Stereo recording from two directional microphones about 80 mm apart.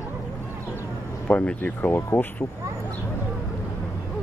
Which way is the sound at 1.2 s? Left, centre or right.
Centre.